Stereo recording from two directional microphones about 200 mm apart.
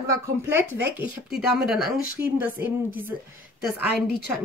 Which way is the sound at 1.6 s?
Centre (ahead or behind).